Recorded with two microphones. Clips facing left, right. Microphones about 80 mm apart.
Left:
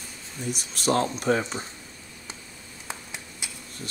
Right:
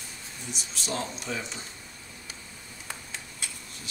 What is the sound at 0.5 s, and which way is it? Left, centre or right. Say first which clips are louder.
Speech: left 9 dB; left.